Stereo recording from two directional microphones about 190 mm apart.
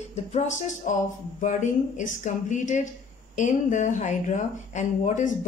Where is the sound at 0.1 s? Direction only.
40° left (ahead or behind).